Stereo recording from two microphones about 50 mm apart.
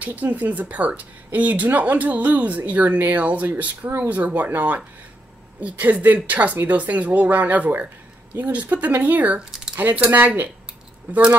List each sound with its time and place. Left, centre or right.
0.0 s speech: right
9.4 s a sound: centre
9.8 s speech: right